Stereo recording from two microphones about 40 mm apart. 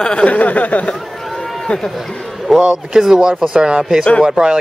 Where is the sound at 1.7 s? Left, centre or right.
Left.